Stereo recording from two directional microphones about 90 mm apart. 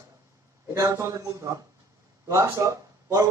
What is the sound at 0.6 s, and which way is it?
A man's voice, 40° right (ahead or behind).